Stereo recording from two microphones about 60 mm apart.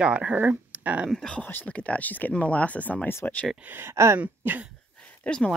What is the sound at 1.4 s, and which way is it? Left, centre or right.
Speech, left.